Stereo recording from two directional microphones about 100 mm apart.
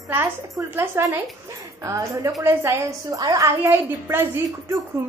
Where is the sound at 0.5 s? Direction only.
25° right (ahead or behind).